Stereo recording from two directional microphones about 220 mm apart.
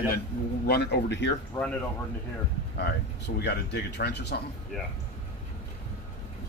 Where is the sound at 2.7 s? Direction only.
50° left (ahead or behind).